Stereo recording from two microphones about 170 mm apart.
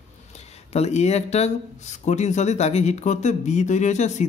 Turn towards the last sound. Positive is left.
turn(degrees=45)  # may be behind; listen again after turning